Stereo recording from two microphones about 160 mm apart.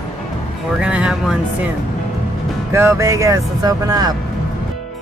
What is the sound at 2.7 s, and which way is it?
Speech, 15° right (ahead or behind).